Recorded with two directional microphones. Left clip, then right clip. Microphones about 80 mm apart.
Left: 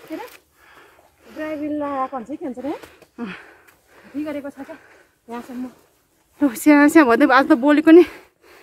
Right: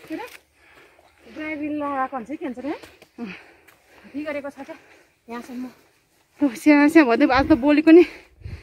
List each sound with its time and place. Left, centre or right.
0.1 s a sound: centre
2.2 s speech: left
3.2 s sniff: left
4.0 s speech: centre
6.5 s speech: centre